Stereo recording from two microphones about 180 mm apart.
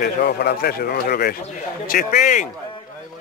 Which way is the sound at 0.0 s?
60° left (ahead or behind).